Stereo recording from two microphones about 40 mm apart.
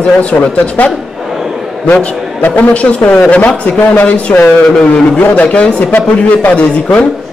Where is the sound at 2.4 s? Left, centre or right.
Left.